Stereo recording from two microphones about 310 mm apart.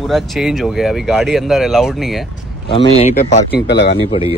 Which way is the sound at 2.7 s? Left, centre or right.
Centre.